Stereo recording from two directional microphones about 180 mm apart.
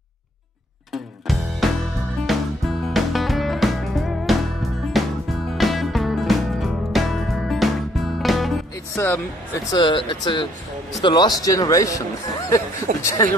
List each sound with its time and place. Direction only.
0.9 s music: centre (ahead or behind)
8.9 s speech: 15° left (ahead or behind)
9.7 s speech: 25° left (ahead or behind)
12.9 s speech: 50° right (ahead or behind)